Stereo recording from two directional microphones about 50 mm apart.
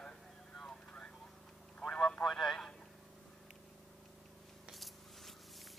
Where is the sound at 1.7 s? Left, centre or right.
Centre.